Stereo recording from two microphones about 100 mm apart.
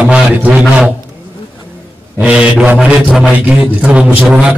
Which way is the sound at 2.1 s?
10° right (ahead or behind).